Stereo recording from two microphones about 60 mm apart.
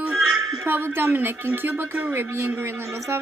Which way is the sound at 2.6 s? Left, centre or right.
Right.